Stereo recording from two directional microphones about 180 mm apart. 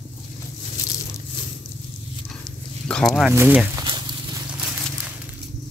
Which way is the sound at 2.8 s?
5° left (ahead or behind).